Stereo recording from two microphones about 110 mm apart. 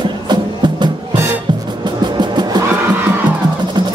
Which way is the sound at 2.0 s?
40° right (ahead or behind).